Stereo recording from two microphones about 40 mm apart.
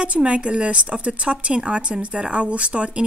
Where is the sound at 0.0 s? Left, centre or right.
Right.